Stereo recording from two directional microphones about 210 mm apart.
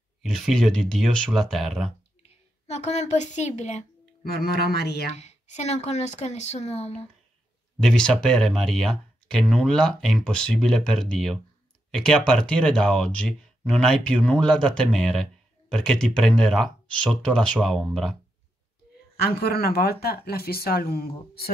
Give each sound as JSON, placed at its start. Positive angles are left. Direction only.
{"t": 0.2, "sound": "speech", "side_deg": 0}
{"t": 2.2, "sound": "a sound", "side_deg": 30}
{"t": 4.6, "sound": "speech", "side_deg": 50}
{"t": 5.1, "sound": "speech", "side_deg": 30}
{"t": 7.8, "sound": "speech", "side_deg": 5}
{"t": 19.2, "sound": "speech", "side_deg": 45}